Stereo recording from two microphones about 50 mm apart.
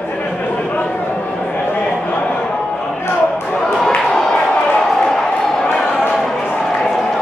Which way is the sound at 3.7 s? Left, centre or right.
Centre.